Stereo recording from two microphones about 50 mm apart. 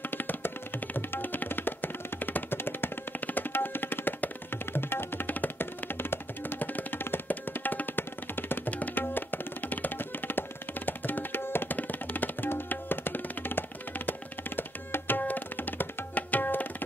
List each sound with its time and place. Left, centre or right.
0.1 s music: left
8.7 s tabla: left